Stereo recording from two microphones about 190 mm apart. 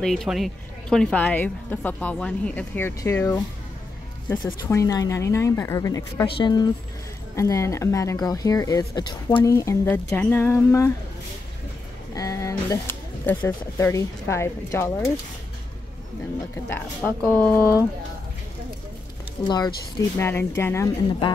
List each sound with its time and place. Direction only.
0.0 s speech: centre (ahead or behind)
12.1 s speech: 15° left (ahead or behind)
16.6 s speech: 10° left (ahead or behind)
19.4 s speech: 20° left (ahead or behind)